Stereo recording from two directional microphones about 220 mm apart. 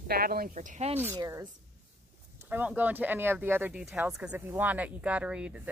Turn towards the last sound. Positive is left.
turn(degrees=-5)  # may be behind; listen again after turning